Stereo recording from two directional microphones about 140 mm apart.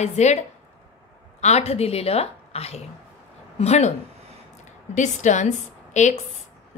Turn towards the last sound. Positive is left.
turn(degrees=55)  # may be behind; listen again after turning